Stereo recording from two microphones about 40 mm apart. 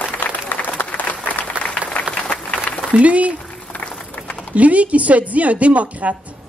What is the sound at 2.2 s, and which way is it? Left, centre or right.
Applause, left.